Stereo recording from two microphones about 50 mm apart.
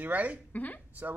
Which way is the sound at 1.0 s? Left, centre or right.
Right.